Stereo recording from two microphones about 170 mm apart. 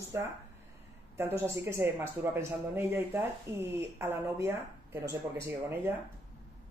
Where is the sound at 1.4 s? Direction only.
15° right (ahead or behind).